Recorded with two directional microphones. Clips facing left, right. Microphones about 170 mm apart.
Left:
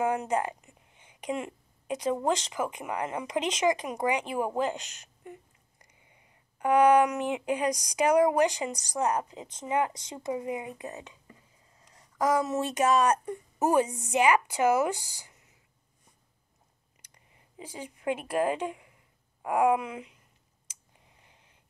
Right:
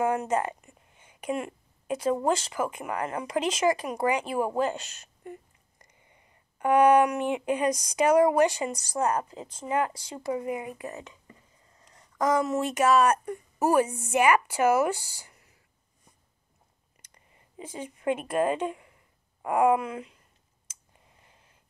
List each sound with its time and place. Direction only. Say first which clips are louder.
0.0 s a sound: right 2 dB; 15° left (ahead or behind)
1.9 s speech: right 2 dB; 15° left (ahead or behind)
4.6 s a sound: right 2 dB; 15° left (ahead or behind)
6.7 s speech: right 1 dB; 15° left (ahead or behind)
12.2 s speech: right 1 dB; 5° left (ahead or behind)
17.0 s speech: right 1 dB; 10° left (ahead or behind)